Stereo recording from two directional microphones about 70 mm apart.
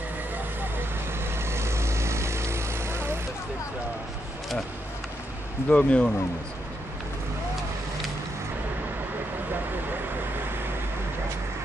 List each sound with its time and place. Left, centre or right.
0.6 s vehicle: right
5.7 s speech: centre